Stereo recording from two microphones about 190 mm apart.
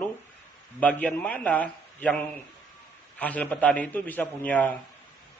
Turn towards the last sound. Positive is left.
turn(degrees=10)  # may be behind; listen again after turning